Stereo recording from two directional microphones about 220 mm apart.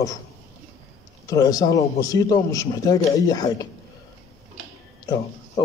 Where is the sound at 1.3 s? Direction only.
15° left (ahead or behind).